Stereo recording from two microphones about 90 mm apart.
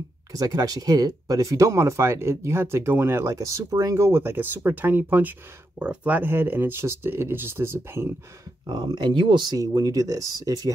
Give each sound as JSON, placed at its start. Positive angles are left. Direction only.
{"t": 0.3, "sound": "speech", "side_deg": -45}
{"t": 8.6, "sound": "speech", "side_deg": -55}
{"t": 9.6, "sound": "speech", "side_deg": -40}